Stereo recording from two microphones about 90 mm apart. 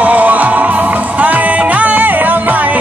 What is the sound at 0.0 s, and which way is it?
Music, 15° right (ahead or behind).